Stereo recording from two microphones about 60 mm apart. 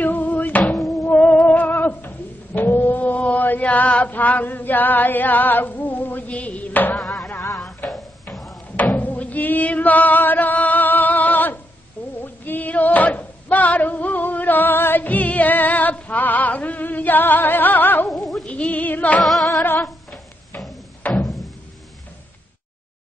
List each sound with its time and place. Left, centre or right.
0.0 s music: left
8.9 s music: left
12.2 s a sound: left
18.1 s music: centre
18.4 s female singing: left
19.2 s music: centre
20.5 s music: left
21.0 s a sound: left